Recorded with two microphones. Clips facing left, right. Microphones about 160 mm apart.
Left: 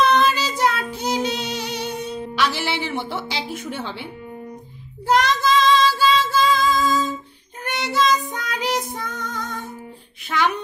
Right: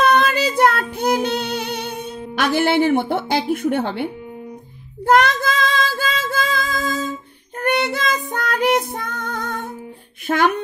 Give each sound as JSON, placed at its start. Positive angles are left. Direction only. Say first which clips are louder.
{"t": 0.0, "sound": "child singing", "louder": "right 2 dB", "side_deg": -55}
{"t": 10.2, "sound": "speech", "louder": "right 4 dB", "side_deg": -50}